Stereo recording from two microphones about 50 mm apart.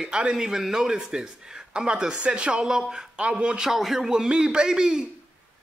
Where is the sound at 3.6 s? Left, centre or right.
Centre.